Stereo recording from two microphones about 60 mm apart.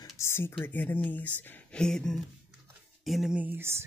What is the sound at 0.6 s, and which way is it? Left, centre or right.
Speech, left.